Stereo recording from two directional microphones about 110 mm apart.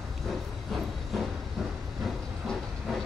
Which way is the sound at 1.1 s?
Centre (ahead or behind).